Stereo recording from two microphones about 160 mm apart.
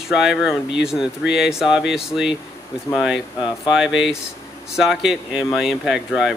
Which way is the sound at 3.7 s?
5° right (ahead or behind).